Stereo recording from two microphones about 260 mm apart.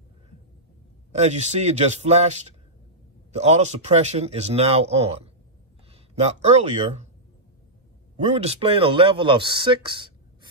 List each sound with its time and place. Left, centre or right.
1.1 s speech: right
8.2 s speech: right